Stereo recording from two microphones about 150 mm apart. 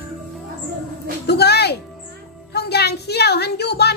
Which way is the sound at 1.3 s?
90° left.